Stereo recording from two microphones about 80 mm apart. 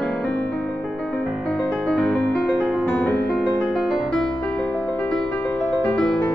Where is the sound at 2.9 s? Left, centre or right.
Centre.